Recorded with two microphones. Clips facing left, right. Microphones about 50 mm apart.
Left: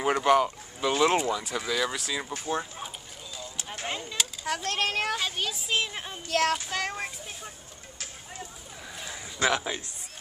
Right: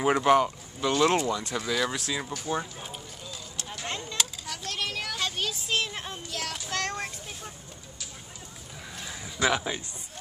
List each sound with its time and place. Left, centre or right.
0.0 s speech: centre
0.7 s speech: centre
1.3 s speech: centre
3.8 s a sound: centre
4.5 s a child's voice: left
5.2 s speech: centre
6.2 s a child's voice: left
6.7 s speech: centre
8.9 s a sound: centre